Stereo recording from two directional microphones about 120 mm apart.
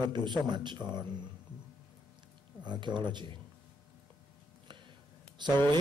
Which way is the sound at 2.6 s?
40° right (ahead or behind).